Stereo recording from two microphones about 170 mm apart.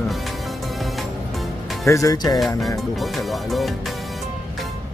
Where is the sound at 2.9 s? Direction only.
Centre (ahead or behind).